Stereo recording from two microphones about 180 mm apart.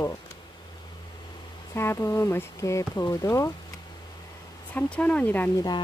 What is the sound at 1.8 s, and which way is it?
Speech, 15° left (ahead or behind).